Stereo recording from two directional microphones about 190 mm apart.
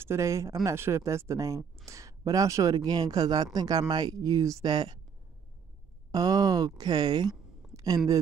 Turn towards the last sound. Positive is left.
turn(degrees=-20)  # may be behind; listen again after turning